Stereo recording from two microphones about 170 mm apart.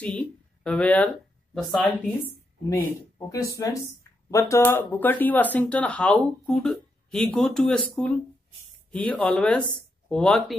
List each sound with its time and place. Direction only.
0.0 s speech: 5° left (ahead or behind)
2.8 s speech: 20° left (ahead or behind); by 10.4 s 5° left (ahead or behind)